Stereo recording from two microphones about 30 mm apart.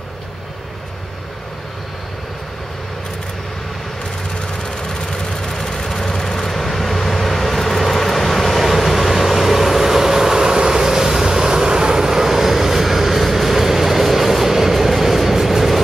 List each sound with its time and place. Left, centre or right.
4.6 s vehicle: left; by 15.8 s centre